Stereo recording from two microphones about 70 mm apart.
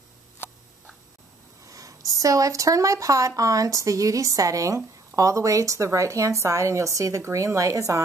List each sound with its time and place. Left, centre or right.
1.7 s speech: right